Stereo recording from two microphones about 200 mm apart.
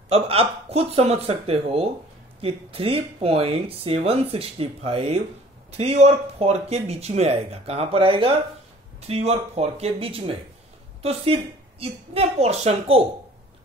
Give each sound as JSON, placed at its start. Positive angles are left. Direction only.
{"t": 0.1, "sound": "speech", "side_deg": -30}